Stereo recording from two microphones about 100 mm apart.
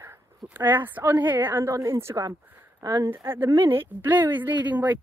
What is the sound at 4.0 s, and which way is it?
Speech, 20° right (ahead or behind).